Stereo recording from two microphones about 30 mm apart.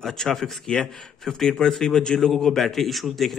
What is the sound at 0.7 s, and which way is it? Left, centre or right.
Speech, left.